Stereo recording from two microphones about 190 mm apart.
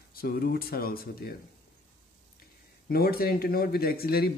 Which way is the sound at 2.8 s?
55° left (ahead or behind).